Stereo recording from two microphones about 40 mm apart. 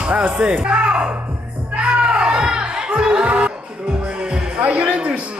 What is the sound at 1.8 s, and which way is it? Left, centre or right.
Music, right.